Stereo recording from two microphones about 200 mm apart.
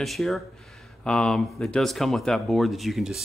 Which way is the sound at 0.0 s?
Centre (ahead or behind).